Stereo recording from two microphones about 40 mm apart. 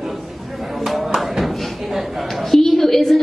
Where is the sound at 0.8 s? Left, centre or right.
Centre.